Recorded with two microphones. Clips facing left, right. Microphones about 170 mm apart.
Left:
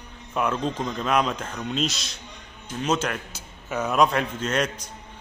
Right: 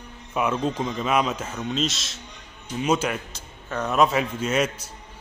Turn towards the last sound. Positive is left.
turn(degrees=-5)  # may be behind; listen again after turning